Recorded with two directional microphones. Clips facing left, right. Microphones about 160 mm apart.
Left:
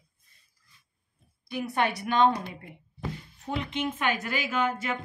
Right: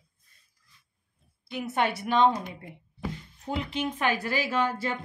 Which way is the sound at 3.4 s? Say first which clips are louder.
Even; 30° right (ahead or behind).